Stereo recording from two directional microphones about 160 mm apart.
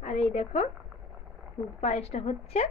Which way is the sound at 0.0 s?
45° left (ahead or behind).